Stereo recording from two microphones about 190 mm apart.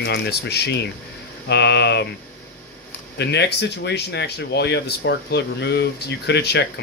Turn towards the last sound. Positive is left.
turn(degrees=65)  # may be behind; listen again after turning